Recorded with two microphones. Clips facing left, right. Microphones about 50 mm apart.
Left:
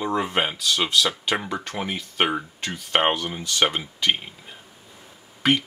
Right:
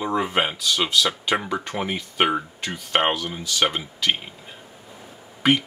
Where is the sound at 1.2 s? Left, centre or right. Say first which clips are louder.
Right 2 dB; centre.